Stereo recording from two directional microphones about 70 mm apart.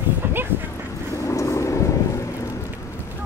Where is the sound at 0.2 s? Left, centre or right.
Right.